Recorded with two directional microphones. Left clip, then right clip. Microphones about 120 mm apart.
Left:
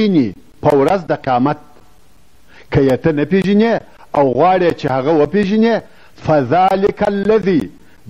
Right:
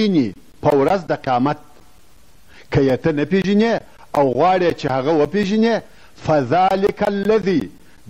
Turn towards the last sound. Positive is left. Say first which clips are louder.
# left 3 dB
turn(degrees=35)  # may be behind; listen again after turning